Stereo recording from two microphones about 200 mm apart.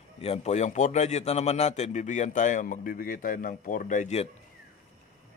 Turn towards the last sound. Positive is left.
turn(degrees=35)  # may be behind; listen again after turning